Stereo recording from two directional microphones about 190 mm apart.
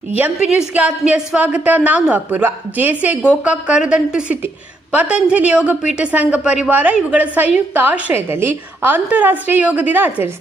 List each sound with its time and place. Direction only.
0.2 s a woman's voice: 5° right (ahead or behind)